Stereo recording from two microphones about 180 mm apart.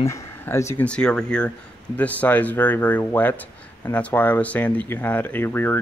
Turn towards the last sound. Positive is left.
turn(degrees=10)  # may be behind; listen again after turning